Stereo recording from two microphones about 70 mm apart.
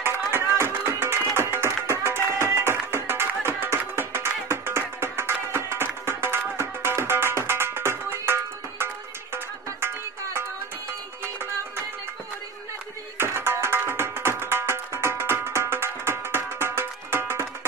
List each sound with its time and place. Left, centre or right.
0.0 s music: right
13.2 s music: right